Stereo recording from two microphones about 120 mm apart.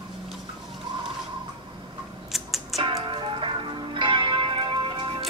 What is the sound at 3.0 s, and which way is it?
Music, 45° right (ahead or behind).